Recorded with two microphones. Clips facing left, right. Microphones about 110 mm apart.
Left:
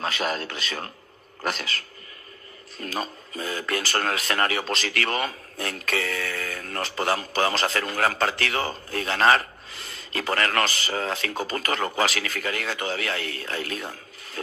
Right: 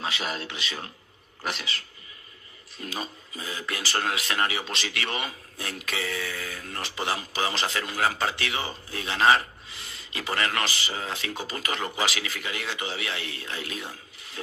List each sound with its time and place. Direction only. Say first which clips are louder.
0.0 s a man's voice: left 4 dB; 50° left (ahead or behind)
6.0 s a sound: left 2 dB; 15° right (ahead or behind)
6.3 s a man's voice: left 4 dB; 50° left (ahead or behind)